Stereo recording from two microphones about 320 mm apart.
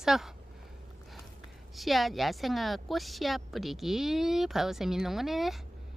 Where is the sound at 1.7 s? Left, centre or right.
Centre.